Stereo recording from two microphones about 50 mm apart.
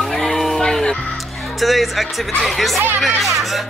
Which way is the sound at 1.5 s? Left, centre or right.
Centre.